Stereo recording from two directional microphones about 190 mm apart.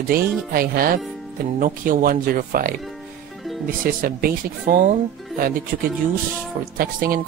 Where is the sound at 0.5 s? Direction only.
50° right (ahead or behind).